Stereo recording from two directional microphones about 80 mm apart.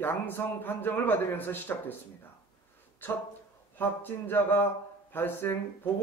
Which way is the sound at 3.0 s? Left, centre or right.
Left.